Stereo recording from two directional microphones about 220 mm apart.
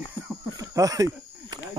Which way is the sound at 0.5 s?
15° right (ahead or behind).